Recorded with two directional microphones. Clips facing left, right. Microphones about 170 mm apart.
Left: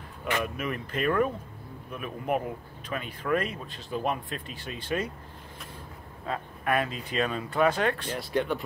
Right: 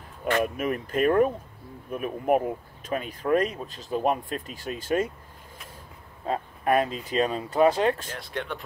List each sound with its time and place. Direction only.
0.4 s speech: 45° right (ahead or behind)
6.2 s speech: 35° right (ahead or behind)
8.1 s speech: centre (ahead or behind)